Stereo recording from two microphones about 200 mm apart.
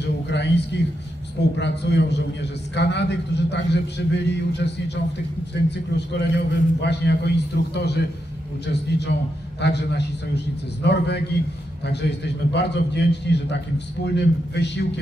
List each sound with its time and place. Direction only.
0.0 s a sound: 60° left (ahead or behind)
1.6 s a man's voice: 60° left (ahead or behind)
9.6 s a man's voice: 60° left (ahead or behind)